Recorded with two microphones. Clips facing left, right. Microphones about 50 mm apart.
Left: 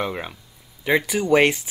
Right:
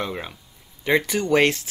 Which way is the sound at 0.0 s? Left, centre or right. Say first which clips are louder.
Left 2 dB; centre.